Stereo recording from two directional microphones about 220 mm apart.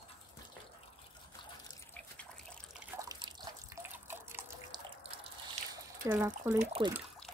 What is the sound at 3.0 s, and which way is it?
Drip, 15° right (ahead or behind).